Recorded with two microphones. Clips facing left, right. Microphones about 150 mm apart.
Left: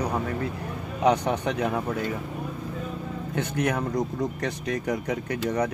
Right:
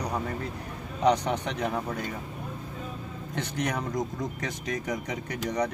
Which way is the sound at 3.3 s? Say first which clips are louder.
Left 4 dB; 5° left (ahead or behind).